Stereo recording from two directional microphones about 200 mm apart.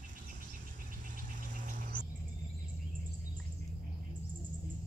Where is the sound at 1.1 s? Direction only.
40° right (ahead or behind).